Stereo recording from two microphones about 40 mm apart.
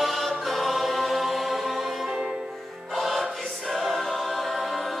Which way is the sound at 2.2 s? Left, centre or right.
Centre.